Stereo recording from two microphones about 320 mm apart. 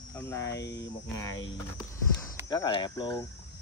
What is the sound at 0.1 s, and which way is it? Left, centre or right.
Speech, centre.